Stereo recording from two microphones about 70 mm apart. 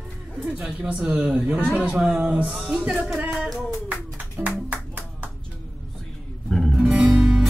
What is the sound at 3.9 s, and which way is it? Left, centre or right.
Music, right.